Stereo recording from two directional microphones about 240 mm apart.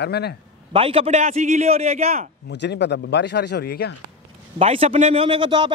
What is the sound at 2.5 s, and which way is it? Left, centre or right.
Speech, left.